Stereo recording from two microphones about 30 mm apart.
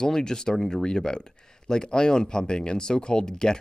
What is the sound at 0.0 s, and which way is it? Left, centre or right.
Speech, left.